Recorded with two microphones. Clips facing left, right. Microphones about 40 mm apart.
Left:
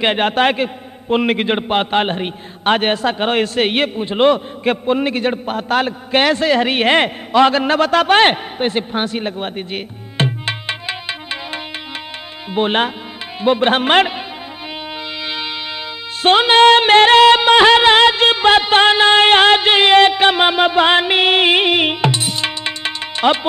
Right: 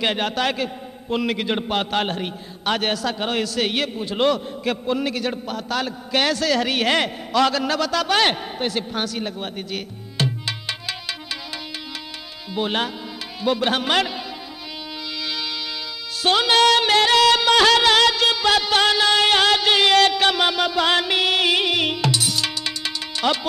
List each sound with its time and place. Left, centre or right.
0.0 s a man's voice: left
15.2 s music: left
16.2 s a sound: left